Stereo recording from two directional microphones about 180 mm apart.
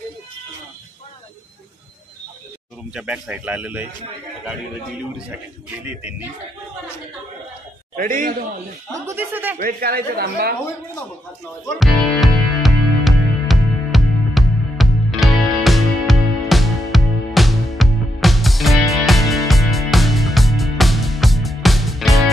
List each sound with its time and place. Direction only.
2.9 s a man's voice: 5° right (ahead or behind)
5.7 s a man's voice: 10° right (ahead or behind)
7.9 s a man's voice: 50° right (ahead or behind)
9.0 s a man's voice: 10° right (ahead or behind)
9.6 s speech: 55° right (ahead or behind)
11.8 s music: centre (ahead or behind)